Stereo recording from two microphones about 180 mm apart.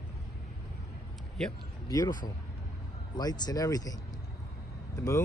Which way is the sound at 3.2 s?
20° left (ahead or behind).